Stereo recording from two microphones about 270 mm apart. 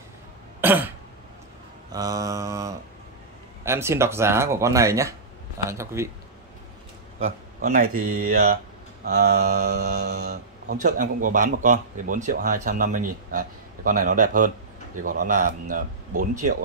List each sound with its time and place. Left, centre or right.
0.6 s throat clearing: centre
1.9 s mantra: centre
3.6 s speech: centre
7.6 s speech: right